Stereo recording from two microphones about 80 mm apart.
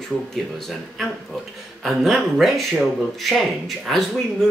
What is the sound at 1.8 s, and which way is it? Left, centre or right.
Speech, centre.